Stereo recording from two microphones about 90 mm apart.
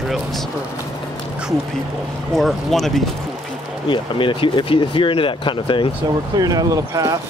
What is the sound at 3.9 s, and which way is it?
Speech, 65° left (ahead or behind).